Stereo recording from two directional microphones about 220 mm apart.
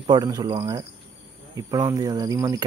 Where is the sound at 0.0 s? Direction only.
20° right (ahead or behind).